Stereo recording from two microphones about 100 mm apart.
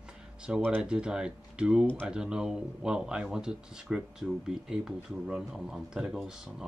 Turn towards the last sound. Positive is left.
turn(degrees=-5)  # may be behind; listen again after turning